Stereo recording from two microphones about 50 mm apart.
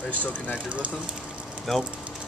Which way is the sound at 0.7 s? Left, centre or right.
Right.